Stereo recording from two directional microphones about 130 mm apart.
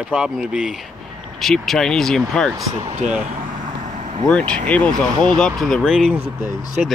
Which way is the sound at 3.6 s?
65° right (ahead or behind).